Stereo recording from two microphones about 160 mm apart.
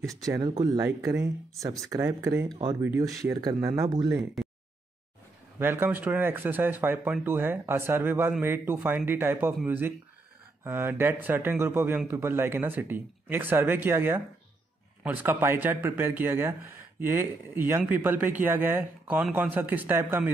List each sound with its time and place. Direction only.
0.2 s speech: 20° right (ahead or behind)
5.6 s speech: 15° right (ahead or behind)